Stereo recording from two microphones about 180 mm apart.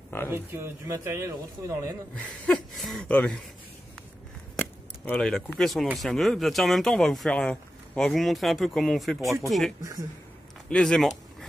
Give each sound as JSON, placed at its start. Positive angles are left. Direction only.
{"t": 0.3, "sound": "speech", "side_deg": -10}
{"t": 2.4, "sound": "speech", "side_deg": 0}
{"t": 4.6, "sound": "speech", "side_deg": 10}
{"t": 9.8, "sound": "a woman's voice", "side_deg": -20}
{"t": 10.7, "sound": "speech", "side_deg": 5}